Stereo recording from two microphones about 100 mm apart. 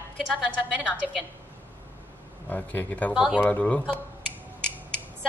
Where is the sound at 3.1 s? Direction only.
5° right (ahead or behind).